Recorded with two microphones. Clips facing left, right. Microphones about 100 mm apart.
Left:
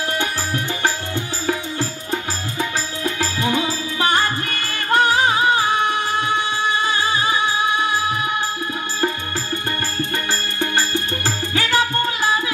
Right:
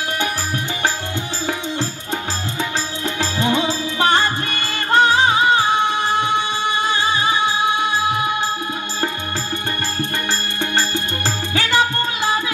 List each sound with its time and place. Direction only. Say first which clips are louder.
3.2 s music: right 3 dB; 25° right (ahead or behind)
10.6 s music: left 1 dB; 20° right (ahead or behind)